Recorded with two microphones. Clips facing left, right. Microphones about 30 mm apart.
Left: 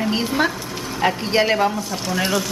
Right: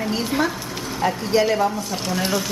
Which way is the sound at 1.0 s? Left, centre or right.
Left.